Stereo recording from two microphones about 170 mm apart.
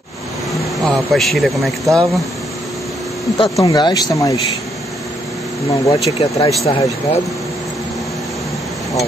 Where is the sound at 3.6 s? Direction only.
20° left (ahead or behind).